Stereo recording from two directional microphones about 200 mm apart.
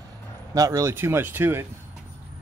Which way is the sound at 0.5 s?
15° right (ahead or behind).